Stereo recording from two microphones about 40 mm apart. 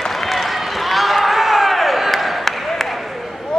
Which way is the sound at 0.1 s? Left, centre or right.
Centre.